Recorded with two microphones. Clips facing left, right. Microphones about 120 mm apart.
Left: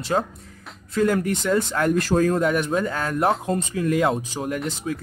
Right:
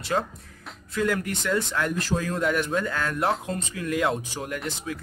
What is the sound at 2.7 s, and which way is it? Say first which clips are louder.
Speech: left 3 dB; 30° left (ahead or behind).